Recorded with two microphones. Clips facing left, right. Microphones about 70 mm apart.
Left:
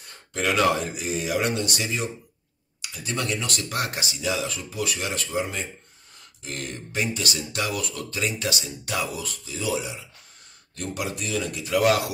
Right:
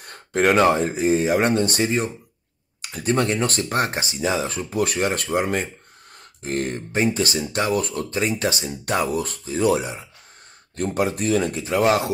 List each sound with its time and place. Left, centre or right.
0.0 s speech: right
6.1 s speech: right